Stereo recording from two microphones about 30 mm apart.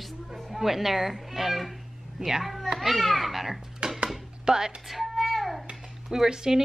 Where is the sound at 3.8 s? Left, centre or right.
Right.